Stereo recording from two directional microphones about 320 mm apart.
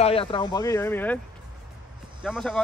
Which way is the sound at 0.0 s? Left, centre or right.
Centre.